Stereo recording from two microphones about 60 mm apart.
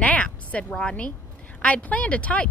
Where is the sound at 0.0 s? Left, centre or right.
Left.